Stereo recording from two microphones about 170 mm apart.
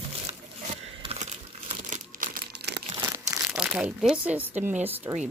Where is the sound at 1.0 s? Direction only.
35° right (ahead or behind); by 2.7 s 70° right (ahead or behind).